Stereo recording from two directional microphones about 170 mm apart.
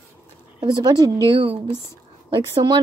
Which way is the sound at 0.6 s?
25° right (ahead or behind).